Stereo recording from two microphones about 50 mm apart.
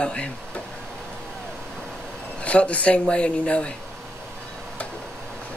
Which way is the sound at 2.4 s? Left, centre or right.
Left.